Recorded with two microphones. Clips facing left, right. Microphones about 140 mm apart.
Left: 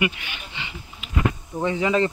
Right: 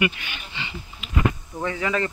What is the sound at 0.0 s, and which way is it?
Speech, 15° left (ahead or behind).